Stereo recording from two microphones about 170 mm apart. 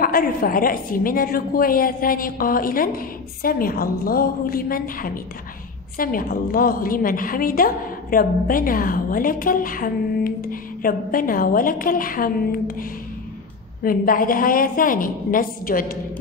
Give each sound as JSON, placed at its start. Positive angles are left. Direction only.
{"t": 0.0, "sound": "a woman's voice", "side_deg": 55}
{"t": 13.8, "sound": "a woman's voice", "side_deg": 55}